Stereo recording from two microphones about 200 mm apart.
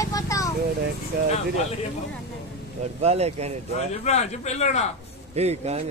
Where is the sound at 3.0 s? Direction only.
30° right (ahead or behind).